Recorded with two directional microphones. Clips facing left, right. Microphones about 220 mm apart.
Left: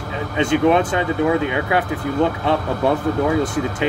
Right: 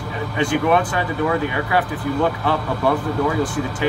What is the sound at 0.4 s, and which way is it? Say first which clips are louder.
Speech: left 3 dB; 25° left (ahead or behind).